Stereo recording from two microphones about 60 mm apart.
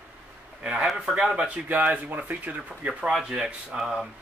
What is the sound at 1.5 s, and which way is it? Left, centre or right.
Speech, right.